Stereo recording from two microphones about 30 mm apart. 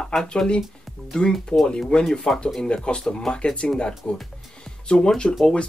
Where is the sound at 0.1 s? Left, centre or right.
Left.